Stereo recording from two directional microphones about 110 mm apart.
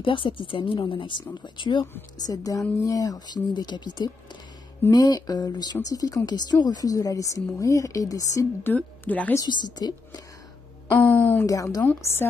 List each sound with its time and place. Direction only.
0.0 s speech: 50° left (ahead or behind)
2.2 s a woman's voice: 30° left (ahead or behind)
8.6 s a woman's voice: 15° left (ahead or behind)
9.5 s a woman's voice: 40° left (ahead or behind)
10.9 s a sound: 15° left (ahead or behind)
11.4 s a woman's voice: 30° left (ahead or behind)
11.8 s a woman's voice: 20° left (ahead or behind)